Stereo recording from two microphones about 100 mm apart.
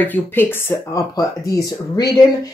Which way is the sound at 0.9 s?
40° left (ahead or behind).